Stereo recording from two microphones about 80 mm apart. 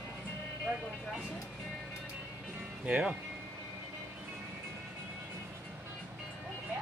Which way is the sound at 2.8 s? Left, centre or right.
Centre.